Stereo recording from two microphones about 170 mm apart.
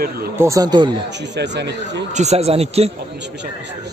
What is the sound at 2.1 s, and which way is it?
Speech, 40° right (ahead or behind).